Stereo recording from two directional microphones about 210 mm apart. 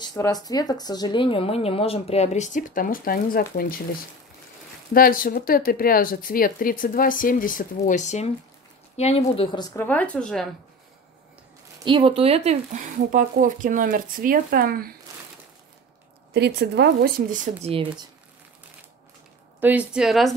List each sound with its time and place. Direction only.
0.0 s speech: 20° left (ahead or behind); by 3.8 s 45° left (ahead or behind)
4.9 s speech: 45° left (ahead or behind); by 9.7 s 25° left (ahead or behind)
9.8 s a woman's voice: 10° left (ahead or behind)
11.8 s speech: 25° right (ahead or behind); by 15.0 s 45° right (ahead or behind)
16.3 s speech: 50° right (ahead or behind)
19.6 s a woman's voice: 5° right (ahead or behind)